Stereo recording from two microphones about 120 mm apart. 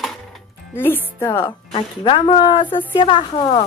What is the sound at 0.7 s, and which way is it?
Speech, 20° left (ahead or behind).